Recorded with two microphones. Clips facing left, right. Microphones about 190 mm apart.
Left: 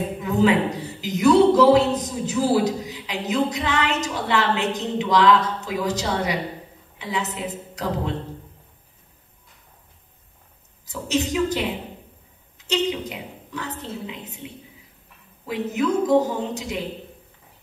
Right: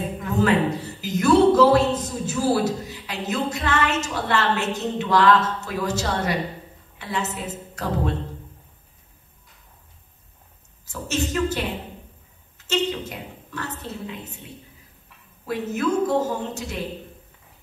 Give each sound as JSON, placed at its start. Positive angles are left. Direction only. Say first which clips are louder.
{"t": 0.2, "sound": "a woman's voice", "louder": "left 1 dB", "side_deg": 15}
{"t": 10.9, "sound": "a woman's voice", "louder": "left 2 dB", "side_deg": 15}